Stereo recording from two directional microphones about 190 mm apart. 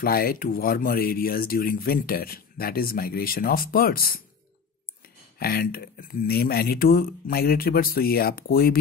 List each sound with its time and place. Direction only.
0.0 s speech: 50° left (ahead or behind)
5.4 s speech: 55° left (ahead or behind)